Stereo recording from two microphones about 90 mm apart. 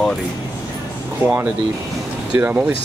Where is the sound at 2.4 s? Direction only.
20° right (ahead or behind).